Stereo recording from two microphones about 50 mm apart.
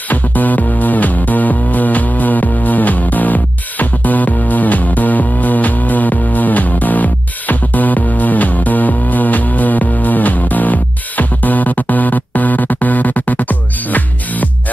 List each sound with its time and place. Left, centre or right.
0.1 s music: left